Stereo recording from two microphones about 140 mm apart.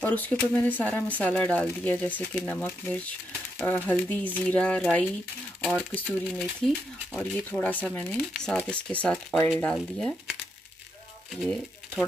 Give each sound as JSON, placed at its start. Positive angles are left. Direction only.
{"t": 0.0, "sound": "speech", "side_deg": 10}
{"t": 11.4, "sound": "speech", "side_deg": 5}